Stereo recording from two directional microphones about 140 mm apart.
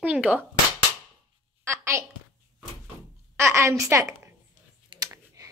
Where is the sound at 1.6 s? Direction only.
20° right (ahead or behind).